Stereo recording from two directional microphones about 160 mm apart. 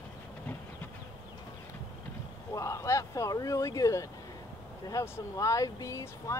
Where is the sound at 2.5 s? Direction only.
20° left (ahead or behind).